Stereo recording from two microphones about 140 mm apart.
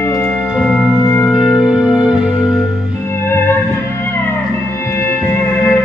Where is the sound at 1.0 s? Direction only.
25° left (ahead or behind).